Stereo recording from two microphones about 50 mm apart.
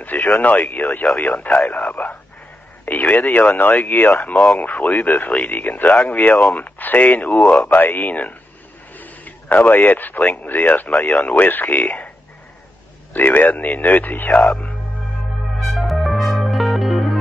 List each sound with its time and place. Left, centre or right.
0.0 s speech: left
1.7 s a sound: left
2.8 s speech: left
4.3 s speech: left
5.3 s a man's voice: left
13.1 s speech: left
15.6 s music: centre